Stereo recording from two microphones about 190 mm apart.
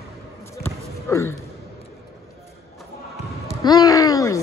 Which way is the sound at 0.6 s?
15° left (ahead or behind).